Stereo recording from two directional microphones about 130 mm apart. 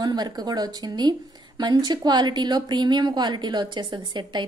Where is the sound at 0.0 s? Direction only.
30° right (ahead or behind).